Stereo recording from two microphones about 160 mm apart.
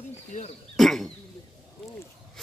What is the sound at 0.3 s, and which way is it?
Speech, 45° left (ahead or behind).